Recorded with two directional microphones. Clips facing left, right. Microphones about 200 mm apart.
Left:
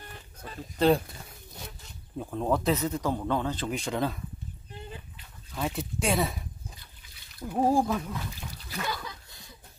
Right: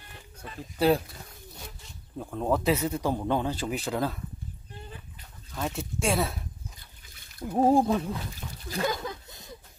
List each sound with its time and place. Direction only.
0.7 s speech: 5° right (ahead or behind)
2.1 s speech: 5° right (ahead or behind)
5.5 s speech: centre (ahead or behind)
7.5 s speech: 25° right (ahead or behind)
8.6 s speech: 45° right (ahead or behind)